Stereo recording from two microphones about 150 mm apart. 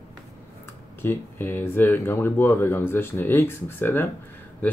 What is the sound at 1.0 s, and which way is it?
Speech, 15° left (ahead or behind).